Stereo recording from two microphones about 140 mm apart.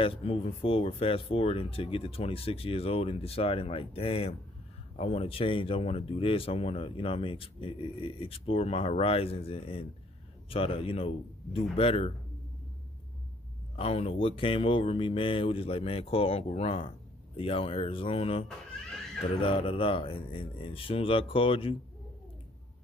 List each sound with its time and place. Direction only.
0.0 s speech: 45° left (ahead or behind)
13.7 s speech: 45° left (ahead or behind)